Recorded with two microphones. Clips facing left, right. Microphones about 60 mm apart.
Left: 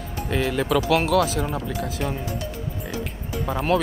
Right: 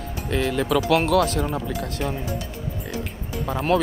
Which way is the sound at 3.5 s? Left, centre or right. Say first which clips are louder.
Right 1 dB; centre.